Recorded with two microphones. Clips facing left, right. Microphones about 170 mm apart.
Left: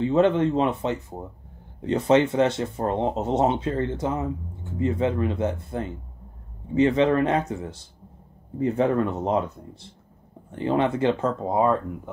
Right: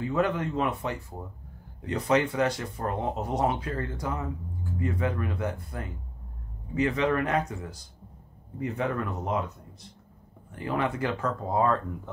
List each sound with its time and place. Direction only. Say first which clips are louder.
0.0 s speech: left 8 dB; 25° left (ahead or behind)